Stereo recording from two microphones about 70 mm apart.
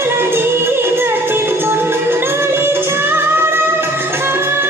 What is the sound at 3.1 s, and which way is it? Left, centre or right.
Music, right.